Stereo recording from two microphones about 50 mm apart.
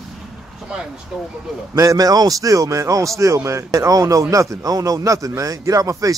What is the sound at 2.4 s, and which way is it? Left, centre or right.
Speech, right.